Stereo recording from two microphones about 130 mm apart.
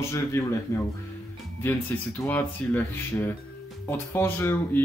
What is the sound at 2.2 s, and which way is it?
Speech, 15° left (ahead or behind).